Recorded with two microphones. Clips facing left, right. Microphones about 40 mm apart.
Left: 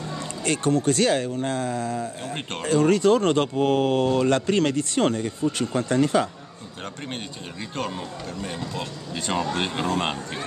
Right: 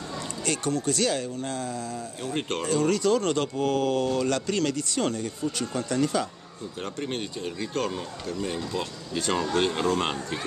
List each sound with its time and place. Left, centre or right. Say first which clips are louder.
0.5 s speech: left 6 dB; left
7.0 s speech: right 5 dB; centre